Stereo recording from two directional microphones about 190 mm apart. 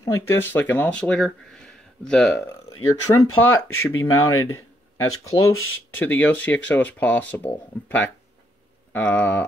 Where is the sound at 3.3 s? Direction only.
90° left.